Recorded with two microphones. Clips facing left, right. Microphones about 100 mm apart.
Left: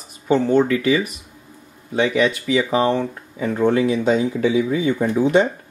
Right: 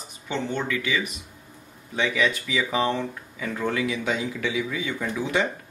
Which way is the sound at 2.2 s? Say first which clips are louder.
Left 6 dB; 30° left (ahead or behind).